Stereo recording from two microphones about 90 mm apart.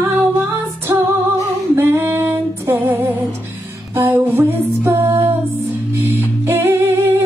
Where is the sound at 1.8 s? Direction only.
30° right (ahead or behind).